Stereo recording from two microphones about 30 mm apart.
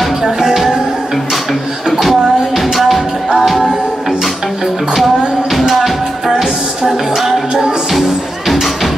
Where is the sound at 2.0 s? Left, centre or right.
Centre.